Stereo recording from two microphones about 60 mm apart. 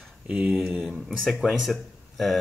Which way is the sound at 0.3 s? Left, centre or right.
Right.